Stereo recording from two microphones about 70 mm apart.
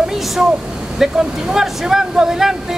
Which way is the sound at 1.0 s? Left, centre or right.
Centre.